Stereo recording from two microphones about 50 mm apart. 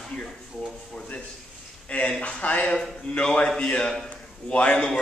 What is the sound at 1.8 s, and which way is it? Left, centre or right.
Speech, left.